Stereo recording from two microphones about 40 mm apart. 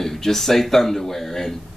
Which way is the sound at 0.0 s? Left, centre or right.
Centre.